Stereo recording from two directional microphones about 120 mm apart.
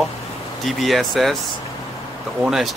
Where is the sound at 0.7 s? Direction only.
Centre (ahead or behind).